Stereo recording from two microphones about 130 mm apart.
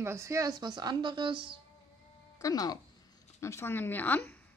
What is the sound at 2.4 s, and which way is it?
Speech, 30° left (ahead or behind).